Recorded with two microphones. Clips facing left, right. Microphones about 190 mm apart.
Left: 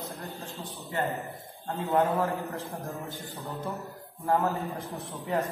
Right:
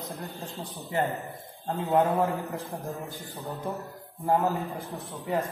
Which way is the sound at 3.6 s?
15° right (ahead or behind).